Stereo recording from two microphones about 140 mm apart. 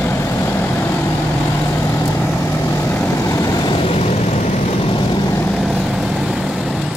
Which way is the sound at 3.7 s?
45° left (ahead or behind).